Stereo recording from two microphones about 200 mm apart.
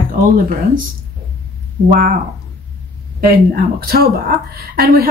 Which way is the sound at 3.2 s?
50° right (ahead or behind).